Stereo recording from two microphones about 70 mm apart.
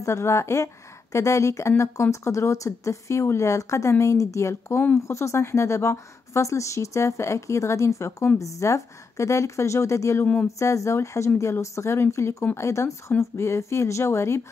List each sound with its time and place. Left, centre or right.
0.0 s speech: left